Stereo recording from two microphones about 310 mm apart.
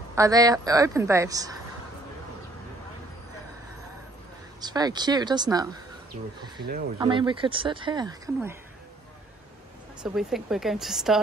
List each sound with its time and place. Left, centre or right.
0.1 s speech: centre
4.6 s speech: centre
7.0 s speech: centre
10.0 s speech: centre